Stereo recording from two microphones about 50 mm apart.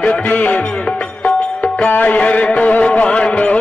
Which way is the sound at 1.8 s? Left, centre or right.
Left.